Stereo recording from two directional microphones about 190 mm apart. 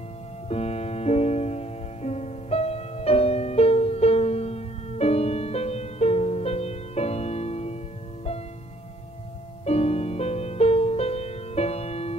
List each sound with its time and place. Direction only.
0.5 s music: 35° left (ahead or behind)
9.7 s music: 35° left (ahead or behind)